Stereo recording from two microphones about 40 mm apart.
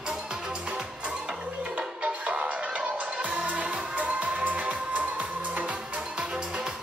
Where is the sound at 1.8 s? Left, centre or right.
Right.